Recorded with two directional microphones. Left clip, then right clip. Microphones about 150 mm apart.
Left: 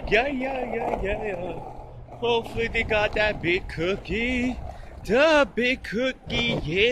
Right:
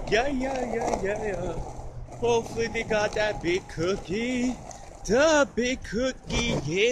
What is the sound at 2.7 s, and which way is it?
Speech, centre (ahead or behind).